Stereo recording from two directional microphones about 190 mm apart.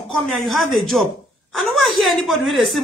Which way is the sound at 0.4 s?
Centre (ahead or behind).